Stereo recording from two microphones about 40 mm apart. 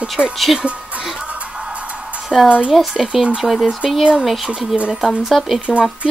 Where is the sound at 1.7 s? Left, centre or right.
Right.